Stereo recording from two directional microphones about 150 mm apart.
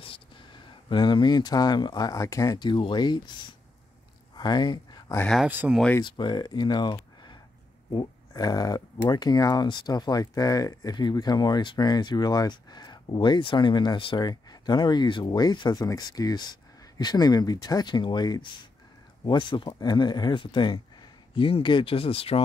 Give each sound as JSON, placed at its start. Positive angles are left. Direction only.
{"t": 0.8, "sound": "speech", "side_deg": 30}
{"t": 4.4, "sound": "a sound", "side_deg": 30}
{"t": 5.2, "sound": "speech", "side_deg": 0}
{"t": 5.5, "sound": "speech", "side_deg": -10}
{"t": 5.9, "sound": "speech", "side_deg": 30}